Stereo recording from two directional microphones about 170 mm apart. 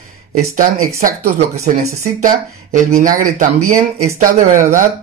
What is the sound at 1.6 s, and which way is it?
Speech, 45° right (ahead or behind).